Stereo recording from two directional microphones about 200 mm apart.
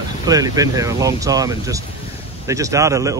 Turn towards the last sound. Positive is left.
turn(degrees=-15)  # may be behind; listen again after turning